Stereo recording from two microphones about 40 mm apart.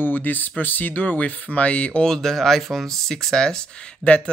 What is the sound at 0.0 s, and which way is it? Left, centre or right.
Speech, left.